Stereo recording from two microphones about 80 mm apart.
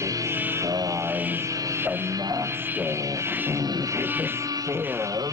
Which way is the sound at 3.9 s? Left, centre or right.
Right.